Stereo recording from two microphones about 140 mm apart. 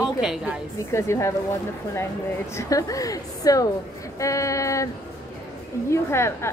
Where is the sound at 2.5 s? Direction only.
25° left (ahead or behind).